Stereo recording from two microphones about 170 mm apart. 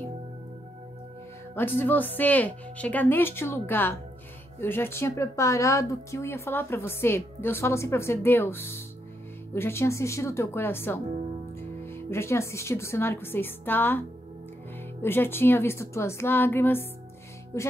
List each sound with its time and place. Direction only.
1.5 s speech: 10° left (ahead or behind)